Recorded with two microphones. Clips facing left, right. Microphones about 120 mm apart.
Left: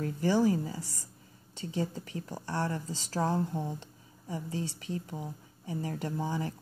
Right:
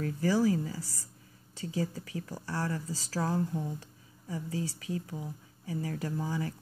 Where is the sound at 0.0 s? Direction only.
25° left (ahead or behind).